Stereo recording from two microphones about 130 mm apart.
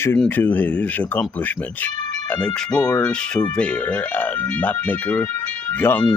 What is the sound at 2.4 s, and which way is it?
Speech, 10° left (ahead or behind).